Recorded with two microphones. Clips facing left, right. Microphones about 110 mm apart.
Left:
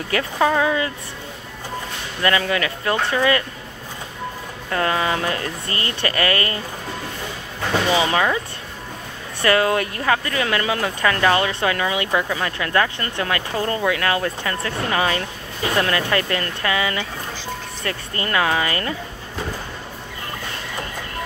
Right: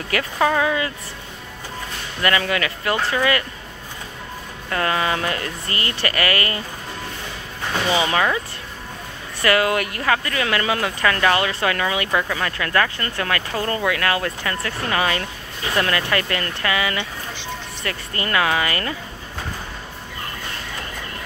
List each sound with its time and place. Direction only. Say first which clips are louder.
0.1 s speech: left 1 dB; 25° left (ahead or behind)
2.2 s speech: left 1 dB; 25° left (ahead or behind)
4.6 s speech: left 1 dB; 20° left (ahead or behind)
7.9 s speech: even; 20° left (ahead or behind)
9.4 s speech: left 1 dB; 25° left (ahead or behind)